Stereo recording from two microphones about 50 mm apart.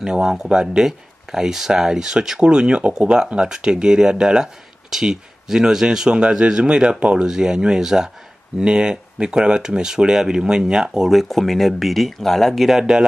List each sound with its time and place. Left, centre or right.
0.0 s speech: centre
11.1 s speech: centre